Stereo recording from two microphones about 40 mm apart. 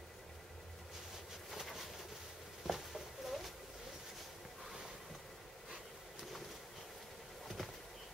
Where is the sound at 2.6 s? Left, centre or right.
Centre.